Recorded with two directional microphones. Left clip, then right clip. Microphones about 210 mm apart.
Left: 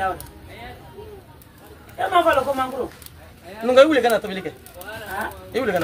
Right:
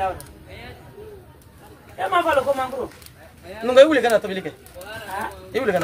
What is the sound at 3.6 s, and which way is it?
Speech, 15° right (ahead or behind).